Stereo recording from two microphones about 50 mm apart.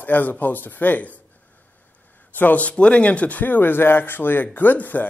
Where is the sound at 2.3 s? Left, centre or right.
Left.